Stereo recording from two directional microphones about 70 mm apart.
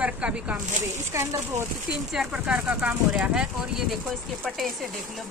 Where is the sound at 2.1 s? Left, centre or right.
Centre.